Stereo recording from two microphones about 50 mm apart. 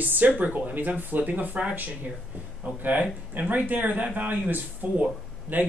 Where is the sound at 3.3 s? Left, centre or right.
Right.